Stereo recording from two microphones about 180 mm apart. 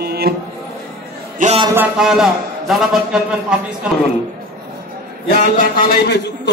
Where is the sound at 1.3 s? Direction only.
40° right (ahead or behind).